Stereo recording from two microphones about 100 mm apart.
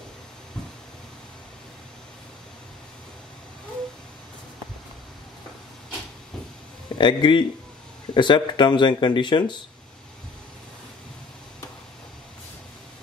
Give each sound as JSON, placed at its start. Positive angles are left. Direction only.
{"t": 7.0, "sound": "speech", "side_deg": 50}